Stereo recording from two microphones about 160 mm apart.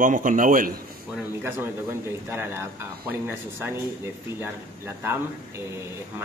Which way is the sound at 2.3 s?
15° right (ahead or behind).